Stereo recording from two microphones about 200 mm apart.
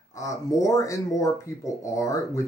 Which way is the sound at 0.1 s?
15° left (ahead or behind).